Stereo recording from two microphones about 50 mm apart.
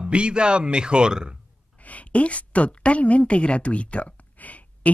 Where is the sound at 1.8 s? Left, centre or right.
Left.